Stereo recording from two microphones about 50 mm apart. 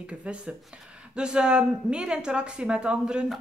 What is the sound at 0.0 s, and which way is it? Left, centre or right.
Speech, right.